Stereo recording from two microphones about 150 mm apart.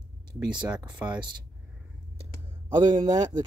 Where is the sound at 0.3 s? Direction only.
30° right (ahead or behind).